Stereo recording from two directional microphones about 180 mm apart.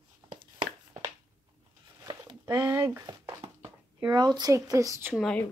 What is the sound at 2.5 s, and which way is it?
Speech, 15° right (ahead or behind).